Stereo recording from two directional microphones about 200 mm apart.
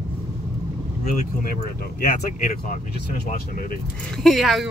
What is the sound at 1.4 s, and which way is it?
Speech, 45° left (ahead or behind).